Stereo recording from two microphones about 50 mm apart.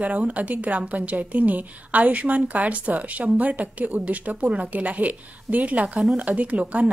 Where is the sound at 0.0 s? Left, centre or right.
Right.